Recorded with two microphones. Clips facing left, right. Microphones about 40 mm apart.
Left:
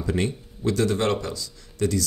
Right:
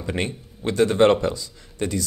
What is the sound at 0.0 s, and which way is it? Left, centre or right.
Speech, right.